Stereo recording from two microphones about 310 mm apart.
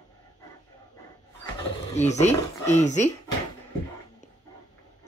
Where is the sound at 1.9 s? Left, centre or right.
Left.